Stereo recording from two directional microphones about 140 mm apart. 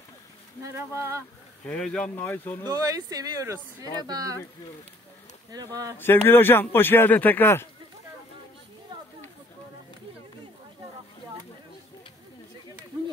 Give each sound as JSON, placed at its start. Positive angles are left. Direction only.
{"t": 0.6, "sound": "speech", "side_deg": -20}
{"t": 1.7, "sound": "speech", "side_deg": 5}
{"t": 2.6, "sound": "speech", "side_deg": -25}
{"t": 5.5, "sound": "speech", "side_deg": -25}
{"t": 5.9, "sound": "speech", "side_deg": 15}